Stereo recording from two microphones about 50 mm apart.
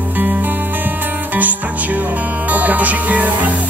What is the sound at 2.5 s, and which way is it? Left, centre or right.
Speech, right.